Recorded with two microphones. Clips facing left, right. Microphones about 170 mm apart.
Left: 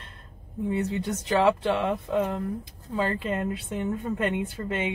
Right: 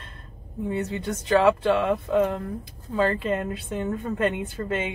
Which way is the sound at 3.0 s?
15° left (ahead or behind).